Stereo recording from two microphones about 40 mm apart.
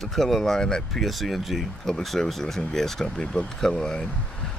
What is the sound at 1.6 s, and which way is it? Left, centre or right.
Speech, centre.